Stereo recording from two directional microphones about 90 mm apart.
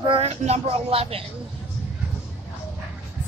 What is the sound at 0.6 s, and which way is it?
Speech, 90° right.